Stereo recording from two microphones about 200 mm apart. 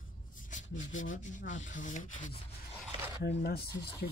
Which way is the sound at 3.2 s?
50° left (ahead or behind).